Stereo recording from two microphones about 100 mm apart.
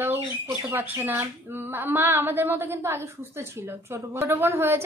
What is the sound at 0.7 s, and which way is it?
Speech, 25° right (ahead or behind).